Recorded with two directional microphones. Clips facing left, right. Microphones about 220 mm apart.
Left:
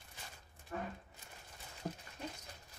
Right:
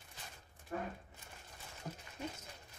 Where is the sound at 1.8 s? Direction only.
30° left (ahead or behind).